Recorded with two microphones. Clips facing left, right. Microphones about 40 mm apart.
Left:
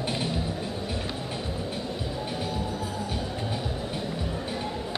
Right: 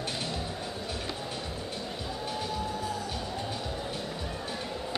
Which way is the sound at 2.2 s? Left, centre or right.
Centre.